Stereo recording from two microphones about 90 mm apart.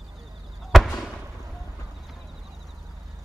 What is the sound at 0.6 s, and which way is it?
Fireworks, centre (ahead or behind).